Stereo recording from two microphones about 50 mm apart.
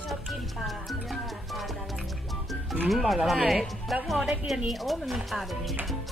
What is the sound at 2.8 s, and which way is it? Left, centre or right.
Music, centre.